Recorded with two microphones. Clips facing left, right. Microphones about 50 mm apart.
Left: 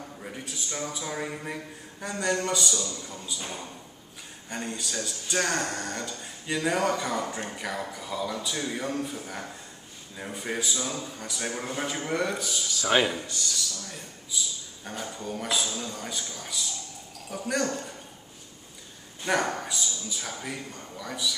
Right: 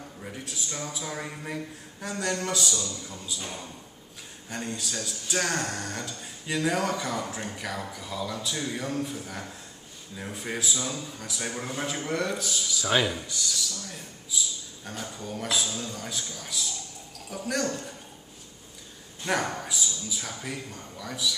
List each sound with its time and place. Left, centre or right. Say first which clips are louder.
0.2 s a man's voice: right 1 dB; centre
12.9 s a man's voice: left 2 dB; centre
13.5 s speech: right 1 dB; centre
19.2 s speech: left 2 dB; centre